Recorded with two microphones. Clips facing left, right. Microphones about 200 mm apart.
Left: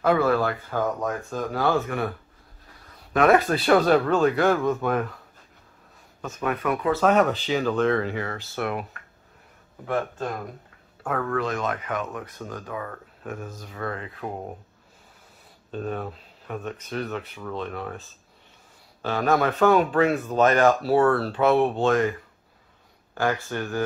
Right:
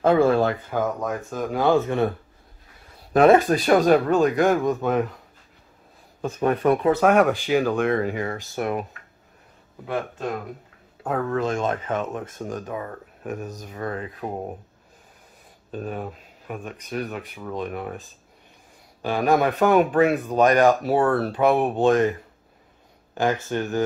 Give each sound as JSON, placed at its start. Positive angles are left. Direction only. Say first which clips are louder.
{"t": 0.0, "sound": "speech", "louder": "right 3 dB", "side_deg": -25}
{"t": 0.7, "sound": "speech", "louder": "left 2 dB", "side_deg": -10}
{"t": 3.3, "sound": "speech", "louder": "right 2 dB", "side_deg": -15}
{"t": 6.2, "sound": "speech", "louder": "right 6 dB", "side_deg": -35}
{"t": 6.9, "sound": "speech", "louder": "even", "side_deg": -10}
{"t": 11.0, "sound": "speech", "louder": "right 2 dB", "side_deg": -20}
{"t": 15.7, "sound": "speech", "louder": "even", "side_deg": -10}
{"t": 19.0, "sound": "speech", "louder": "right 2 dB", "side_deg": -15}
{"t": 23.1, "sound": "speech", "louder": "right 3 dB", "side_deg": -20}